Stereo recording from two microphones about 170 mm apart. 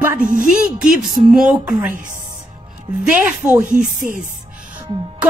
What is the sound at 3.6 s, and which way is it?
Speech, 50° right (ahead or behind).